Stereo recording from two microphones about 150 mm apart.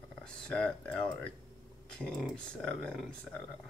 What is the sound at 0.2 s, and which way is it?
Speech, 5° left (ahead or behind).